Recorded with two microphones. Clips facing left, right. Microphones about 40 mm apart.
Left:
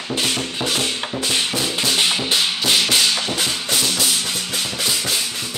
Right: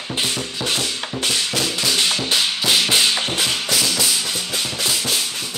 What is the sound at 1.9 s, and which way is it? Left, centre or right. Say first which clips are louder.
Music: left 1 dB; centre.